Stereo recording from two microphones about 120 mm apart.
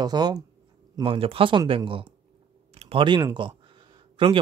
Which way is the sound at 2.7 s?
60° right (ahead or behind).